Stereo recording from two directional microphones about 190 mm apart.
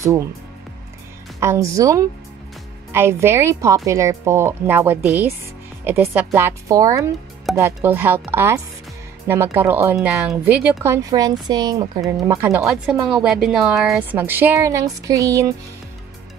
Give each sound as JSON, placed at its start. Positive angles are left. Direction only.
{"t": 0.0, "sound": "a woman's voice", "side_deg": -15}
{"t": 1.4, "sound": "a woman's voice", "side_deg": -15}